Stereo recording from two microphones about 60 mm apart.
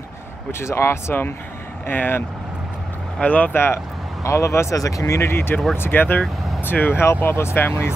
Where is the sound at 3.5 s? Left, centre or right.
Left.